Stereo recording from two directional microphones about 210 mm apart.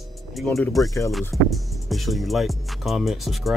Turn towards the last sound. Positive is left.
turn(degrees=0)  # may be behind; listen again after turning